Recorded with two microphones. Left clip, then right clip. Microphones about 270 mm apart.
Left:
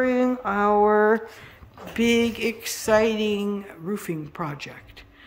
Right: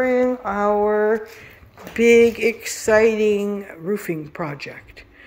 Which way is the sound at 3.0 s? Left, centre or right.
Left.